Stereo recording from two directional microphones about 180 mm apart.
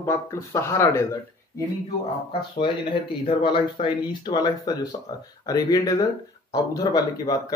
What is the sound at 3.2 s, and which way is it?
A man's voice, 30° left (ahead or behind).